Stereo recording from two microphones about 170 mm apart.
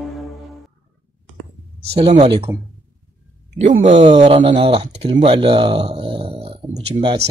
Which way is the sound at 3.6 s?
40° right (ahead or behind).